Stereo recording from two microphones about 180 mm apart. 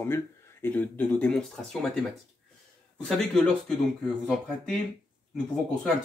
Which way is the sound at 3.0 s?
5° left (ahead or behind).